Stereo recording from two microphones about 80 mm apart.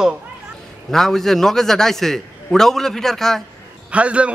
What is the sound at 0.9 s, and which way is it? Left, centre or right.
A man's voice, centre.